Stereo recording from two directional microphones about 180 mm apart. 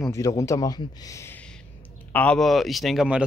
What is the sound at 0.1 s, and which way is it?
Speech, 20° left (ahead or behind).